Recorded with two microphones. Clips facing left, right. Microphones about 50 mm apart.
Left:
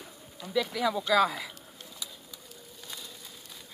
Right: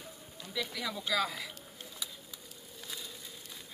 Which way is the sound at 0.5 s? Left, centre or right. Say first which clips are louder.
Left 9 dB; centre.